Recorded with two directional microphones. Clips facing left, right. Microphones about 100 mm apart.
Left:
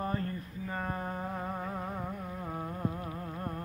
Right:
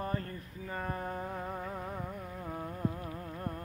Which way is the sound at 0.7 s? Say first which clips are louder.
Left 1 dB; 10° left (ahead or behind).